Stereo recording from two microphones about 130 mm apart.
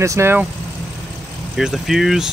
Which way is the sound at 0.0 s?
20° right (ahead or behind).